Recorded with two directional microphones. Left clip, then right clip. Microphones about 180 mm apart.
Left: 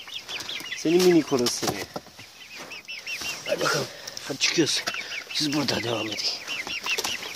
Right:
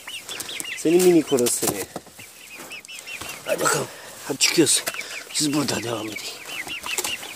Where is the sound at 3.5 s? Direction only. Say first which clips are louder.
Right 3 dB; 30° right (ahead or behind).